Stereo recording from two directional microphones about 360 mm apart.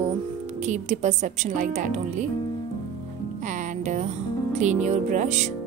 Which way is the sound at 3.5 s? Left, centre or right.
Centre.